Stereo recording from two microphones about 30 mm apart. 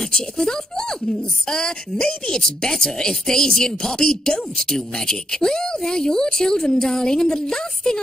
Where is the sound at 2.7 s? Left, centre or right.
Centre.